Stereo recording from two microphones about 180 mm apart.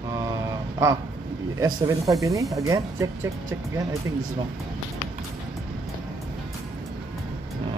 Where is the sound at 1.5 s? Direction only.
20° right (ahead or behind).